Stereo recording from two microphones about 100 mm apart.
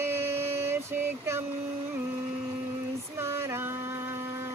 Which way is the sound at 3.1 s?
25° right (ahead or behind).